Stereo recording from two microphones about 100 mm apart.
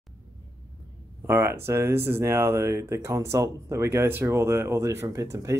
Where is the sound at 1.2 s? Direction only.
25° right (ahead or behind).